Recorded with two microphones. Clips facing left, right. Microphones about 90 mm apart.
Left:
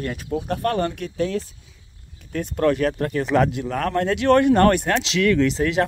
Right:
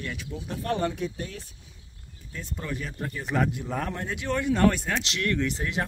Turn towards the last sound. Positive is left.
turn(degrees=90)